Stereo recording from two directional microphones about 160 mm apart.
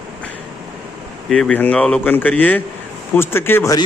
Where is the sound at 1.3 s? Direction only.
5° left (ahead or behind).